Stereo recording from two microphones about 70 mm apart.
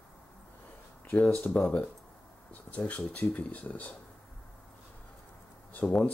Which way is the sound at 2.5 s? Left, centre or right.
Left.